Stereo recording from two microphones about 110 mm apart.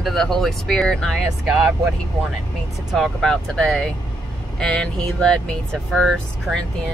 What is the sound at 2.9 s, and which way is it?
Speech, centre (ahead or behind).